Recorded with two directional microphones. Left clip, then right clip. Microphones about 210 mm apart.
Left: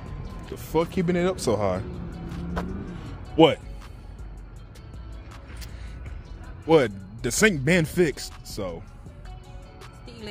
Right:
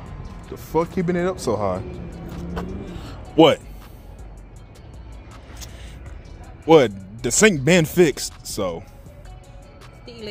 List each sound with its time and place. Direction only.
0.7 s speech: centre (ahead or behind)
2.5 s music: 15° left (ahead or behind)
3.3 s speech: 20° right (ahead or behind)
6.6 s speech: 15° right (ahead or behind)